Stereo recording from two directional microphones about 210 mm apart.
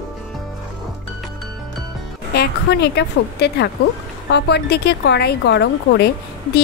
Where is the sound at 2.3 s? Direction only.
50° left (ahead or behind).